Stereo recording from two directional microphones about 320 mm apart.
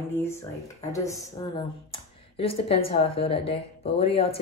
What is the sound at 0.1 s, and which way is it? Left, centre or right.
Speech, centre.